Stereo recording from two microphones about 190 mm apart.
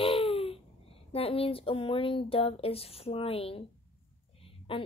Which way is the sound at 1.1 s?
30° left (ahead or behind).